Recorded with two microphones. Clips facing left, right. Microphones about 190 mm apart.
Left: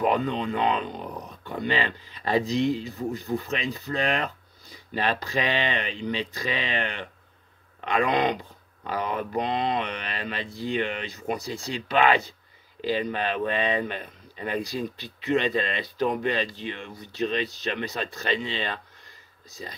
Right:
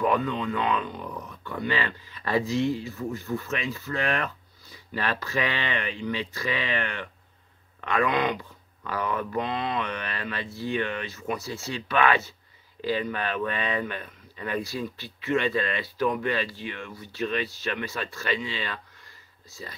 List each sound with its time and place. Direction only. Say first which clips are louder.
0.0 s speech: left 1 dB; 20° left (ahead or behind)